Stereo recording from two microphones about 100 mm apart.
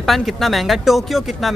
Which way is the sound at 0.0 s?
Centre (ahead or behind).